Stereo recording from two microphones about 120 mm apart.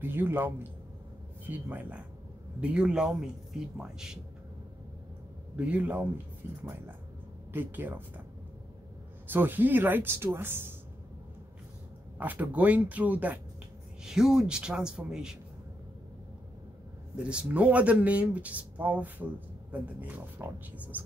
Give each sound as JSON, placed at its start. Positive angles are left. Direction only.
{"t": 0.0, "sound": "speech", "side_deg": -15}
{"t": 1.5, "sound": "speech", "side_deg": -15}
{"t": 5.6, "sound": "speech", "side_deg": -10}
{"t": 9.3, "sound": "speech", "side_deg": -15}
{"t": 12.2, "sound": "speech", "side_deg": -15}
{"t": 17.3, "sound": "speech", "side_deg": -10}